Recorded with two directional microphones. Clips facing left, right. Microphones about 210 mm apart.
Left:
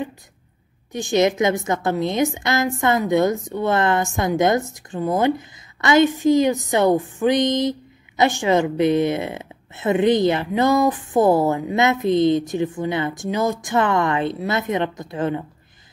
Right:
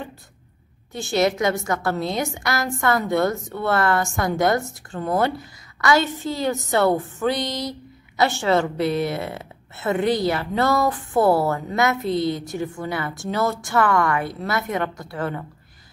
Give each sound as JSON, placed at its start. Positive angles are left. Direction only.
{"t": 0.9, "sound": "a woman's voice", "side_deg": 15}